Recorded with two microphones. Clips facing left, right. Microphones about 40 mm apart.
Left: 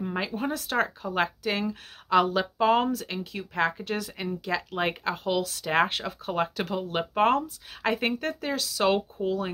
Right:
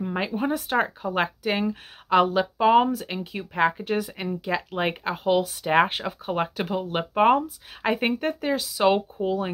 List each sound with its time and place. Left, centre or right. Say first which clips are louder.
0.5 s speech: right 3 dB; right